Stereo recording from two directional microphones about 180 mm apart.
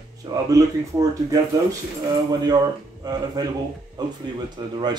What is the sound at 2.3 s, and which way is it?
Speech, 20° right (ahead or behind).